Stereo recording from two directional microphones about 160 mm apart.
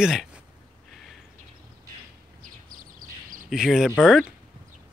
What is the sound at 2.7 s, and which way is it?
Bird, 60° right (ahead or behind).